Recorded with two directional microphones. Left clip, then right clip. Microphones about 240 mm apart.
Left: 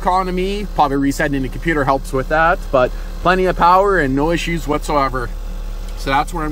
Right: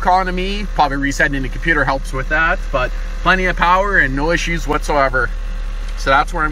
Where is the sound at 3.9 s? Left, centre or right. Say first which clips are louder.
Right 1 dB; left.